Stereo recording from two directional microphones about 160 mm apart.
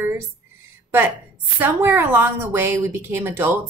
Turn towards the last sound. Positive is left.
turn(degrees=-15)  # may be behind; listen again after turning